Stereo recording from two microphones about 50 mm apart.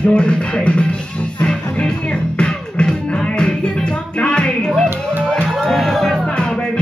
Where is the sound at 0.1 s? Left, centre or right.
Centre.